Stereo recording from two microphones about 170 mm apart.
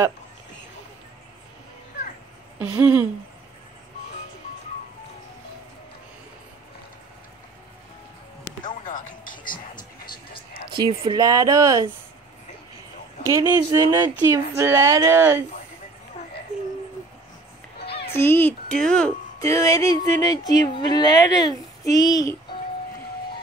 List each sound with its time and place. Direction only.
2.6 s a woman's voice: 10° right (ahead or behind)
8.6 s music: 50° left (ahead or behind)
10.8 s speech: 25° right (ahead or behind)
13.2 s a woman's voice: 15° right (ahead or behind)
17.7 s music: 75° left (ahead or behind)
18.1 s a child's voice: 15° left (ahead or behind)
19.4 s speech: 20° left (ahead or behind)